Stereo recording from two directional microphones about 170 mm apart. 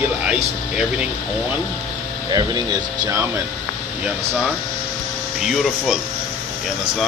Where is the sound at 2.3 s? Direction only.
25° right (ahead or behind).